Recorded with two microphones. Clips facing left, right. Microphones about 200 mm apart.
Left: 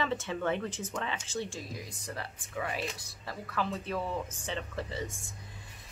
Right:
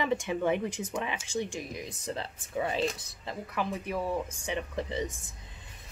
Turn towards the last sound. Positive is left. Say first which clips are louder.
# right 4 dB
turn(degrees=-20)  # may be behind; listen again after turning